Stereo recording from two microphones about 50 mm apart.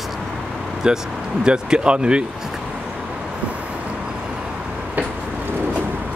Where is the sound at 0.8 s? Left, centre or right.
Centre.